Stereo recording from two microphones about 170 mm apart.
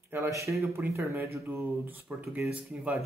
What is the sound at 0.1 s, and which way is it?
Speech, 15° right (ahead or behind).